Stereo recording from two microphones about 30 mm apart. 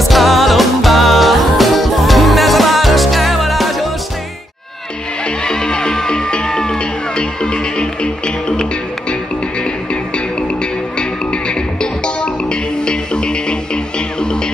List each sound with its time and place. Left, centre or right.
0.0 s music: centre
5.4 s music: left
10.1 s music: left